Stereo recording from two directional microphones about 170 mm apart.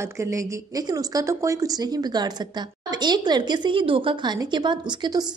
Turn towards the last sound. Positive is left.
turn(degrees=-25)  # may be behind; listen again after turning